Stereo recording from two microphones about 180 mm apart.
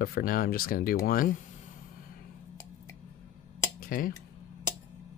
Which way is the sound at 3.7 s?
50° left (ahead or behind).